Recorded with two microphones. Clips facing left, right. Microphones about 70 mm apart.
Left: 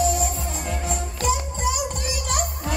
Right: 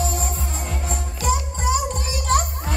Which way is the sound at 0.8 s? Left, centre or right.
Right.